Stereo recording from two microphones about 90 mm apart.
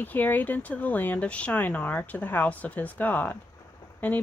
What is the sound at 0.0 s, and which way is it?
Speech, 20° left (ahead or behind).